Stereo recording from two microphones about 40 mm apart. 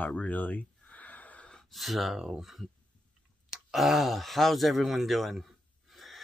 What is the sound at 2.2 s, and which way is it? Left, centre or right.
Speech, centre.